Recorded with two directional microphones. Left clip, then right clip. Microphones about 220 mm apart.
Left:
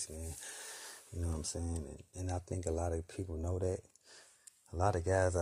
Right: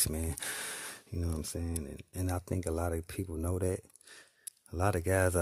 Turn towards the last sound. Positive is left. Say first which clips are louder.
# right 2 dB
turn(degrees=-25)  # may be behind; listen again after turning